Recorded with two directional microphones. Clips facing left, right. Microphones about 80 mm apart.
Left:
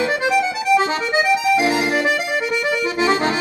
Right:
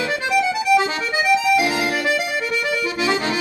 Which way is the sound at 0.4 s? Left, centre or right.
Left.